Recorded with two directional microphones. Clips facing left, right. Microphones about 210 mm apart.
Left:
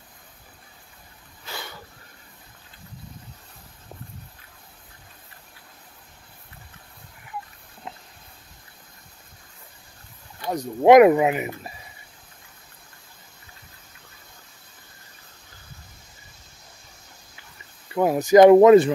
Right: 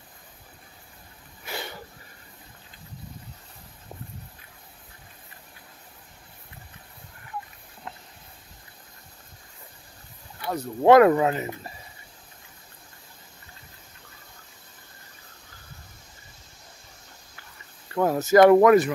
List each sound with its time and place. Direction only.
1.4 s a sound: 20° right (ahead or behind)
10.4 s speech: 15° left (ahead or behind)
17.8 s speech: 15° left (ahead or behind)